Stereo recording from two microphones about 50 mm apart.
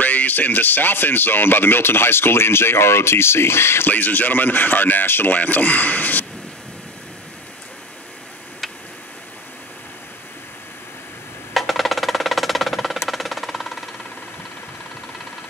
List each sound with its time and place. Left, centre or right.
0.0 s speech: left
3.9 s speech: left
11.5 s music: centre